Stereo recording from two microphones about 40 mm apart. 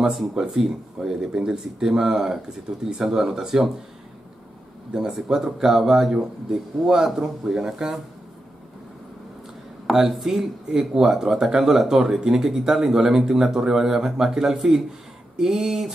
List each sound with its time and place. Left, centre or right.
0.3 s speech: centre
5.1 s speech: centre
9.9 s speech: centre